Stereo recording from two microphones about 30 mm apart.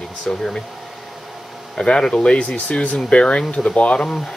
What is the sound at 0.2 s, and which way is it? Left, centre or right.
Speech, centre.